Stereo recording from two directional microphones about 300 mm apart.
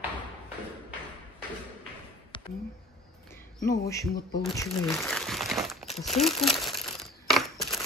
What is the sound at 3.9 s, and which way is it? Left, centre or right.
Speech, centre.